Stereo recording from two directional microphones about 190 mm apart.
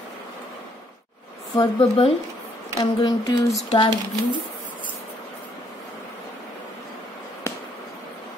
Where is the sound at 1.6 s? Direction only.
30° left (ahead or behind).